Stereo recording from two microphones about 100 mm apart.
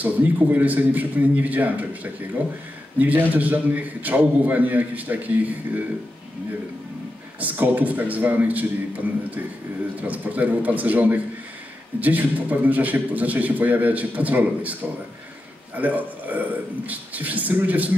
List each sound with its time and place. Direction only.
0.0 s a man's voice: 15° right (ahead or behind)
3.0 s a man's voice: 15° right (ahead or behind)
7.3 s a man's voice: 15° right (ahead or behind)
10.0 s a man's voice: 15° right (ahead or behind)